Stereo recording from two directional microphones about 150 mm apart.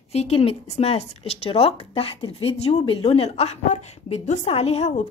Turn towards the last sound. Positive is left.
turn(degrees=45)  # may be behind; listen again after turning